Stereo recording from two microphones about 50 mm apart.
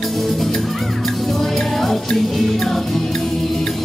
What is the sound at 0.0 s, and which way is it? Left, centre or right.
Music, centre.